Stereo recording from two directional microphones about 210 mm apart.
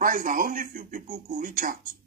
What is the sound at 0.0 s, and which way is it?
Speech, 40° right (ahead or behind).